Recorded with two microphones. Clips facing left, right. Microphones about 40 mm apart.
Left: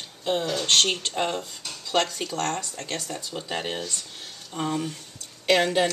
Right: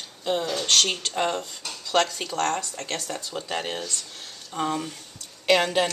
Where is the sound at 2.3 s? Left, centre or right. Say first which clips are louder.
Right 4 dB; right.